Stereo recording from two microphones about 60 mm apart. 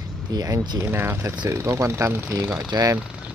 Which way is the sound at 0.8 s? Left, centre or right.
Right.